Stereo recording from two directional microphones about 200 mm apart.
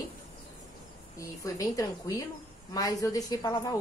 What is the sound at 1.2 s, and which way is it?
A woman's voice, 15° left (ahead or behind).